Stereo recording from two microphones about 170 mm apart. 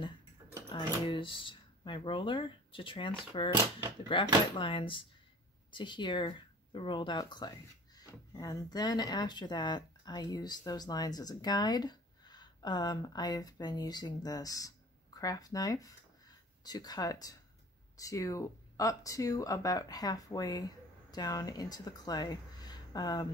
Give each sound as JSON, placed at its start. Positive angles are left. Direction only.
{"t": 0.7, "sound": "speech", "side_deg": 25}